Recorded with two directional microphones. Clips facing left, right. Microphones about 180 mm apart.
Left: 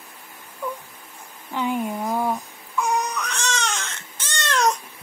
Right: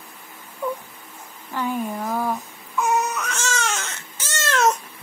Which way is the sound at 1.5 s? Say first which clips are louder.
Left 1 dB; 15° left (ahead or behind).